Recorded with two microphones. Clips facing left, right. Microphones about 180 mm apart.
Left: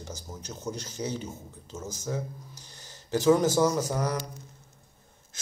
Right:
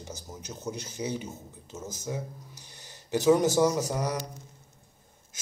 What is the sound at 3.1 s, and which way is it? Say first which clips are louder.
A man's voice: even; 20° right (ahead or behind).